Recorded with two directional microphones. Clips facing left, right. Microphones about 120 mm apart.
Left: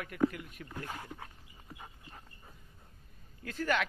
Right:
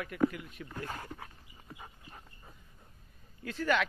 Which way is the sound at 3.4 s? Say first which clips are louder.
Right 2 dB; 45° left (ahead or behind).